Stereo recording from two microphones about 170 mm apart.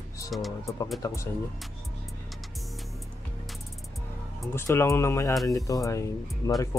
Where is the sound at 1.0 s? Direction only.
20° left (ahead or behind).